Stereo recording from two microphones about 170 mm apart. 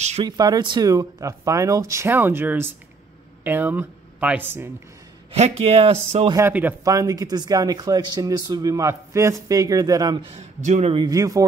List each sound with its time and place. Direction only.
0.2 s speech: 25° right (ahead or behind)
5.3 s speech: 35° right (ahead or behind)
6.3 s speech: 10° right (ahead or behind)
10.3 s a man's voice: 40° right (ahead or behind)
11.1 s speech: 20° right (ahead or behind)